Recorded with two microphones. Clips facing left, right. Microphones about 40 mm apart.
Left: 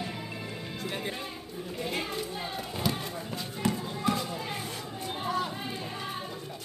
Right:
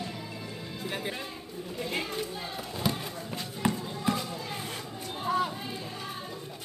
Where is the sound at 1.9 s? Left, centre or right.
Centre.